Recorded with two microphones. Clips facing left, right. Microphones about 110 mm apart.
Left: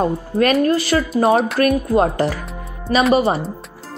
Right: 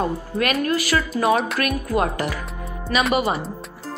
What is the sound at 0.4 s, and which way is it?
A woman's voice, 35° left (ahead or behind).